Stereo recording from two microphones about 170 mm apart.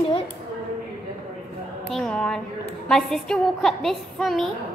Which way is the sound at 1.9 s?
5° left (ahead or behind).